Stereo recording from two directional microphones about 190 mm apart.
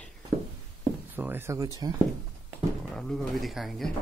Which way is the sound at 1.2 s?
10° right (ahead or behind).